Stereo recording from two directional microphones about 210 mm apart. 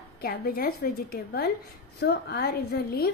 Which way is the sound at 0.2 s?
45° left (ahead or behind).